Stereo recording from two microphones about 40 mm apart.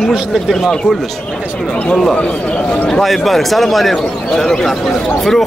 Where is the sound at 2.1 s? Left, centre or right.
Left.